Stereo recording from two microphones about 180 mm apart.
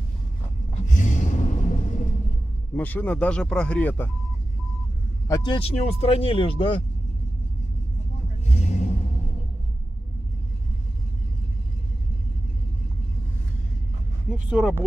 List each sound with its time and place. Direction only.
0.7 s a sound: 45° left (ahead or behind)
2.7 s speech: 10° left (ahead or behind)
5.3 s speech: 25° left (ahead or behind)
8.5 s vehicle: 40° left (ahead or behind)
14.5 s speech: 5° right (ahead or behind)